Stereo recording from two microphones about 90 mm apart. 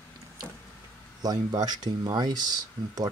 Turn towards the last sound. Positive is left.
turn(degrees=-50)  # may be behind; listen again after turning